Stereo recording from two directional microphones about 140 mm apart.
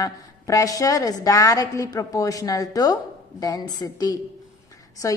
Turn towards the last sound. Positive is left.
turn(degrees=25)  # may be behind; listen again after turning